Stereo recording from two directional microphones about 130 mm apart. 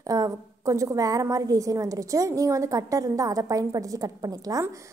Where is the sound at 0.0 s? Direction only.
25° right (ahead or behind).